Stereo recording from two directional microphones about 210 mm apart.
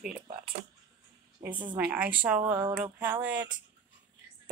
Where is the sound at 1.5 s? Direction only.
20° right (ahead or behind).